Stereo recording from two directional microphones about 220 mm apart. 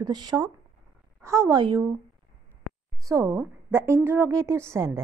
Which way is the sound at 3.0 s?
10° right (ahead or behind).